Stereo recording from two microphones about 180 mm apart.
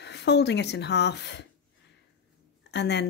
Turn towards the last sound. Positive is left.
turn(degrees=70)  # may be behind; listen again after turning